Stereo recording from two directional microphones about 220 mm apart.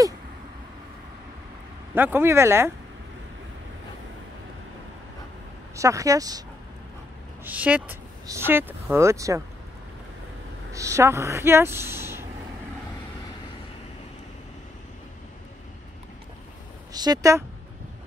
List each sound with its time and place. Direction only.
2.0 s speech: 10° right (ahead or behind)
5.8 s speech: 15° right (ahead or behind)
7.4 s speech: 5° right (ahead or behind)
10.7 s speech: 15° right (ahead or behind)
16.9 s speech: 20° right (ahead or behind)